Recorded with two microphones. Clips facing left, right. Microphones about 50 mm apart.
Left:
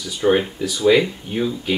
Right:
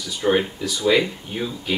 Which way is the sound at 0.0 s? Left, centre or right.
Centre.